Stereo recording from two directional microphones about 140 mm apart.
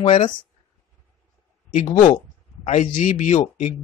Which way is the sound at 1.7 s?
55° left (ahead or behind).